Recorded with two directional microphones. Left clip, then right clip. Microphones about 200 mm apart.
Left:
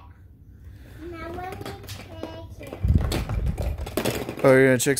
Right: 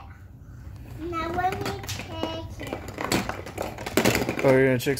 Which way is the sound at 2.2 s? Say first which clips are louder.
Right 5 dB; 10° right (ahead or behind).